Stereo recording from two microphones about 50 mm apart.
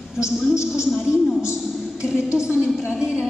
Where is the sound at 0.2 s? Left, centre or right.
Left.